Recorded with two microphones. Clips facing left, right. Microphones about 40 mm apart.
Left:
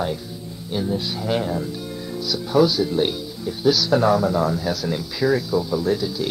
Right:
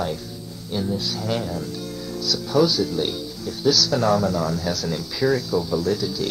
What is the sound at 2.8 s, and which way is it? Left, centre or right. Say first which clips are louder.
Speech: left 3 dB; left.